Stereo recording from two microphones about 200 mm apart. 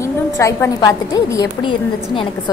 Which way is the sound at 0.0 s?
15° left (ahead or behind).